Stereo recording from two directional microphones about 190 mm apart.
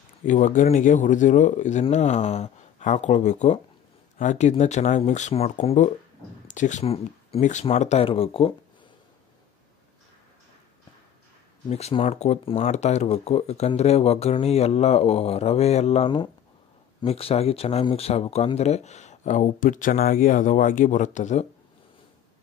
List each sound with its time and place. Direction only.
0.3 s speech: 40° left (ahead or behind)
11.7 s speech: 30° left (ahead or behind)